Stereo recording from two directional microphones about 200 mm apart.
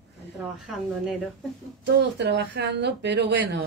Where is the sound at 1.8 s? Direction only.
60° right (ahead or behind).